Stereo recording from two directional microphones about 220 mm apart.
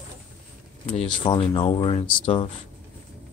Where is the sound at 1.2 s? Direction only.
20° left (ahead or behind).